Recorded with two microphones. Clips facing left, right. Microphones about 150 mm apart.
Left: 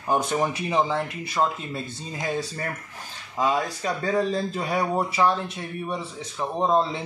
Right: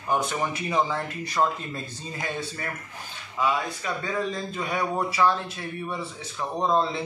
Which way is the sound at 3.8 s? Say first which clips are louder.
Left 6 dB; 35° left (ahead or behind).